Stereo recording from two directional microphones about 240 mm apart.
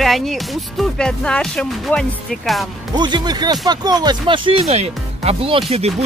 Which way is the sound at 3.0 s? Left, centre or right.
Centre.